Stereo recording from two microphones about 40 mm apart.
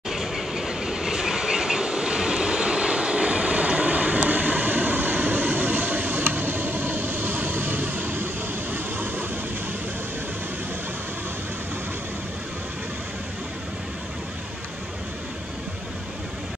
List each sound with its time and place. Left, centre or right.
0.1 s train: centre; by 6.2 s right
6.2 s vehicle: right